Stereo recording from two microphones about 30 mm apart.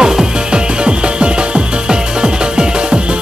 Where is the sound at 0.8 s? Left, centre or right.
Right.